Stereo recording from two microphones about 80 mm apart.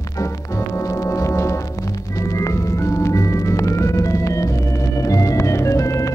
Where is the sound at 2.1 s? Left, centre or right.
Left.